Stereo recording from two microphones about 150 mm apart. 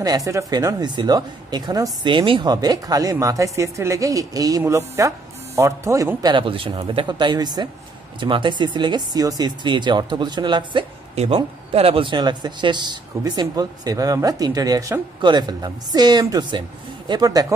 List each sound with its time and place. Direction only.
0.0 s speech: 25° right (ahead or behind)